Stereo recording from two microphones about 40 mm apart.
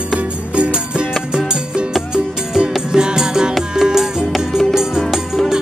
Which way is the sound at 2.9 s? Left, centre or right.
Centre.